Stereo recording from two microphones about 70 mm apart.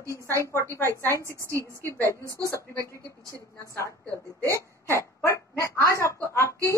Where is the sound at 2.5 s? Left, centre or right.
Left.